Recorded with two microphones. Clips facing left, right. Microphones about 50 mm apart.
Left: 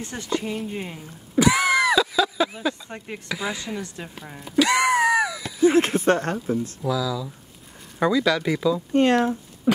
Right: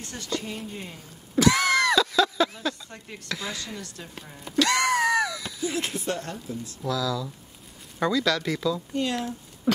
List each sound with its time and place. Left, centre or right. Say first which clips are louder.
0.0 s speech: left 5 dB; left
1.3 s a sound: left 2 dB; centre
3.3 s speech: left 4 dB; centre
4.4 s music: left 4 dB; centre
5.6 s speech: left 13 dB; left
6.8 s speech: left 3 dB; centre
8.9 s speech: left 9 dB; left